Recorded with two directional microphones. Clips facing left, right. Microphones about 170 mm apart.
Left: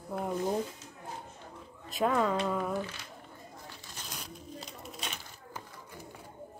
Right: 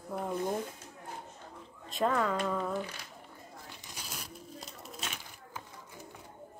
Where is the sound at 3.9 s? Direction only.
5° right (ahead or behind).